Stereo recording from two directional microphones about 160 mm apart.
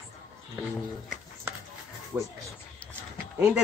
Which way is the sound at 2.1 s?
10° right (ahead or behind).